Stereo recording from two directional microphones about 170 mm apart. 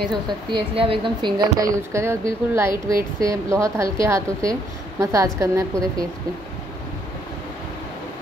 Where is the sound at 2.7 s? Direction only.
55° right (ahead or behind).